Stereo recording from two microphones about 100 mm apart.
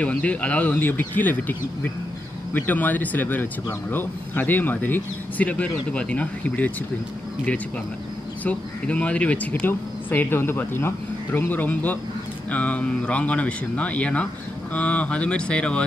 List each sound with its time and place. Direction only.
0.0 s speech: 15° left (ahead or behind)
8.5 s speech: 15° left (ahead or behind)